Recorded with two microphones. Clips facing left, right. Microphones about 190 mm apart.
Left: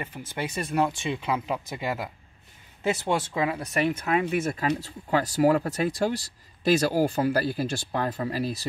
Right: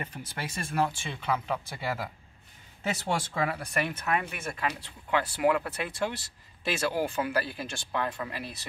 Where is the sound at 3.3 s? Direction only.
20° left (ahead or behind).